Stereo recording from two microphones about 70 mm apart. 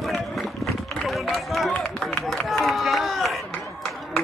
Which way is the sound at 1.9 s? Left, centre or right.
Centre.